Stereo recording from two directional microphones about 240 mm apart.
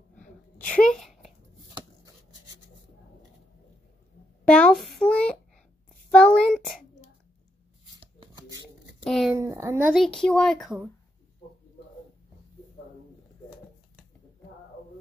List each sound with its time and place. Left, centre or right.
0.1 s a sound: centre
4.5 s a child's voice: centre
8.0 s chopping: centre
9.0 s speech: centre
9.4 s speech: centre